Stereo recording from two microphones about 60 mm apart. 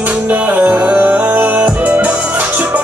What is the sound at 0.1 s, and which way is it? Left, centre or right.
Music, right.